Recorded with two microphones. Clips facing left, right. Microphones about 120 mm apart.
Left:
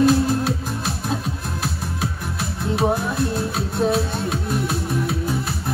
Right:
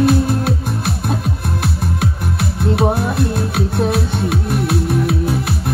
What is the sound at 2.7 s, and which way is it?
Music, 65° right (ahead or behind).